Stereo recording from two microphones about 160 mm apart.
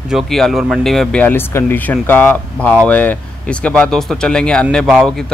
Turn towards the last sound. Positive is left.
turn(degrees=0)  # may be behind; listen again after turning